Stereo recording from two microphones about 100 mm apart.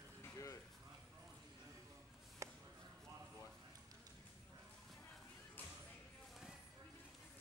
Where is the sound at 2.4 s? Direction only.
30° right (ahead or behind).